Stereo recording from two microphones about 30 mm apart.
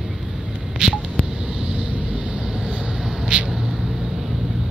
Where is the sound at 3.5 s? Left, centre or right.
Centre.